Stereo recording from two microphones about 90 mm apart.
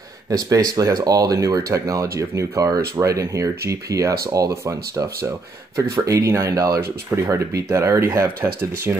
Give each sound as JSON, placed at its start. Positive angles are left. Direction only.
{"t": 0.3, "sound": "speech", "side_deg": -40}